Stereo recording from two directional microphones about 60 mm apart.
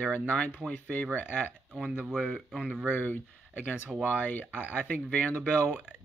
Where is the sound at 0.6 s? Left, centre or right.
Right.